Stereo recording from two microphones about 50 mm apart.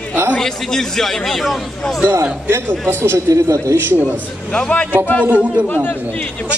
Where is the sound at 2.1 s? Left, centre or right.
Right.